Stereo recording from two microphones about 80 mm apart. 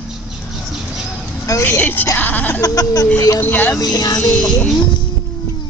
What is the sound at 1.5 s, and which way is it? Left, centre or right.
Speech, left.